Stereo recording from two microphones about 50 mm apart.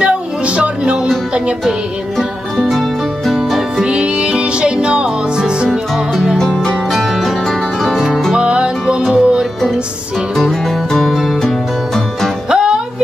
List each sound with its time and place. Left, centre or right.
0.0 s music: right
2.1 s music: centre
3.8 s music: right
5.9 s music: centre
6.3 s music: centre
6.9 s music: centre
8.4 s music: centre
10.3 s music: centre
12.4 s music: centre